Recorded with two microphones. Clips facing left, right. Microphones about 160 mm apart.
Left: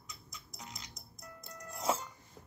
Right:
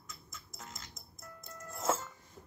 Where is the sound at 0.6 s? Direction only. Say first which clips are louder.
Left 1 dB; 15° left (ahead or behind).